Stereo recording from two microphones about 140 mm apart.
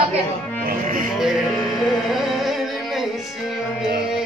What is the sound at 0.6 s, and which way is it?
Music, 80° right.